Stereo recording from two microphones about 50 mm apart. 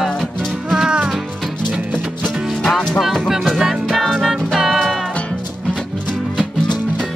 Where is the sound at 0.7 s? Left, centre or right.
Centre.